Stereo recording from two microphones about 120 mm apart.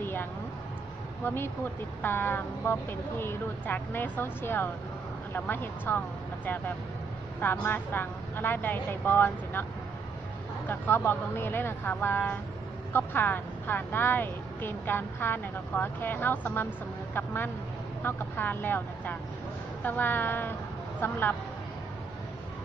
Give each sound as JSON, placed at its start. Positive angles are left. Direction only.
{"t": 0.0, "sound": "a sound", "side_deg": 15}
{"t": 1.2, "sound": "speech", "side_deg": 20}
{"t": 10.7, "sound": "speech", "side_deg": 20}